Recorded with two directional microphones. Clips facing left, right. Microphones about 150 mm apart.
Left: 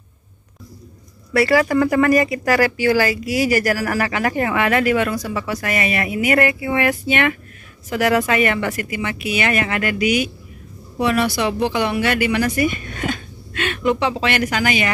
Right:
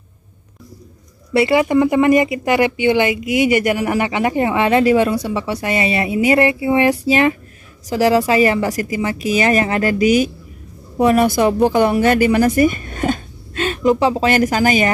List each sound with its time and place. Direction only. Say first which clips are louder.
1.3 s speech: right 2 dB; 20° right (ahead or behind); by 14.9 s 40° right (ahead or behind)